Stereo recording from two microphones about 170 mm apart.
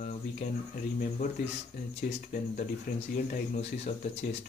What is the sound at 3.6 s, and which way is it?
Speech, 40° left (ahead or behind).